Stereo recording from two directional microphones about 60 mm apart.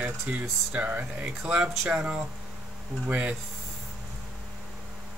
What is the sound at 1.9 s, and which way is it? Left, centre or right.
Music, centre.